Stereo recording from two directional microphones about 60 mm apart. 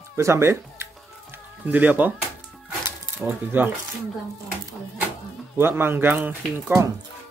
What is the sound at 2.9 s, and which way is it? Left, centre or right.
Coin, right.